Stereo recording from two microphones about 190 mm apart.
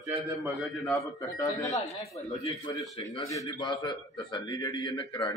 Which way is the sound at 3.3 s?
20° left (ahead or behind).